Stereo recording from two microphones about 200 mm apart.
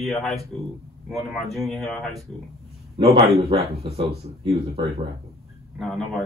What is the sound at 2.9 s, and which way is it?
Speech, 25° right (ahead or behind).